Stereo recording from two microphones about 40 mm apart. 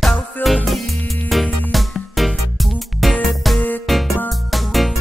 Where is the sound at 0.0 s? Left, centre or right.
Centre.